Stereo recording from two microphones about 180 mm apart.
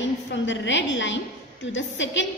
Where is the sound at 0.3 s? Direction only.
90° left.